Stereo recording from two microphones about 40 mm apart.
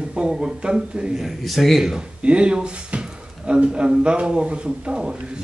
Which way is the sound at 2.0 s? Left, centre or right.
Right.